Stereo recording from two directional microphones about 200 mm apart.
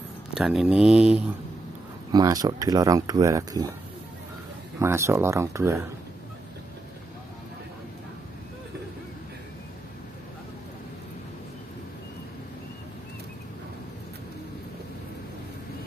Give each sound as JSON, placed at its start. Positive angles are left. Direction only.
{"t": 0.3, "sound": "speech", "side_deg": 0}
{"t": 2.1, "sound": "speech", "side_deg": -20}
{"t": 4.7, "sound": "speech", "side_deg": -15}